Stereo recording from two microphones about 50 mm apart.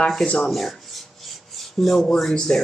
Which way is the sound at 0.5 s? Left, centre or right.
Centre.